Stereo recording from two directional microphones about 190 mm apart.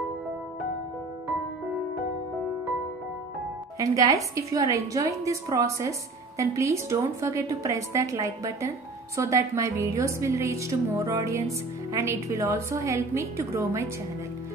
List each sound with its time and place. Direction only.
3.7 s a woman's voice: 20° right (ahead or behind)